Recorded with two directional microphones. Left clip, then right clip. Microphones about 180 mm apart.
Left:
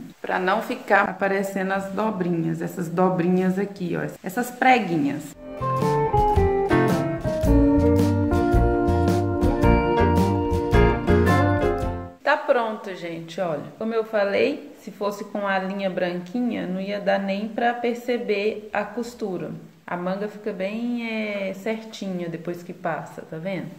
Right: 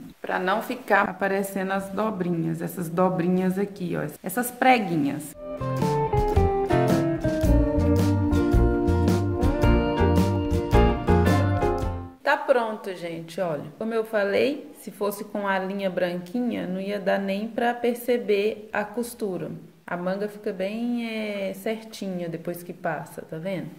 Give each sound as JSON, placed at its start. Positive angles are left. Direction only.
{"t": 0.3, "sound": "a woman's voice", "side_deg": -15}
{"t": 5.6, "sound": "music", "side_deg": 0}
{"t": 12.3, "sound": "a woman's voice", "side_deg": -20}